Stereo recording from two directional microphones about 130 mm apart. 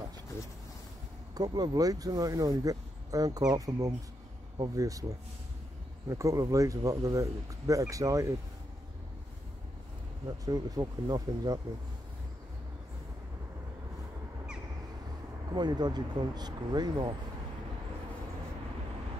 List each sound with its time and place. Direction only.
1.3 s speech: 30° right (ahead or behind)
6.0 s speech: 25° right (ahead or behind)
10.2 s speech: 30° right (ahead or behind)
15.5 s speech: 35° right (ahead or behind)